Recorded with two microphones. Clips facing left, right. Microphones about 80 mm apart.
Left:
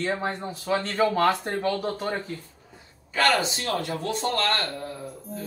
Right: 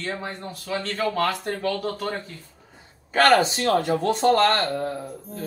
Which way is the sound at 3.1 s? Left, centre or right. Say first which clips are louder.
Right 5 dB; right.